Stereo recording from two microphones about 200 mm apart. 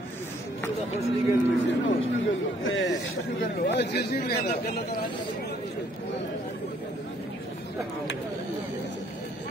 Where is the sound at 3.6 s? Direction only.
60° left (ahead or behind).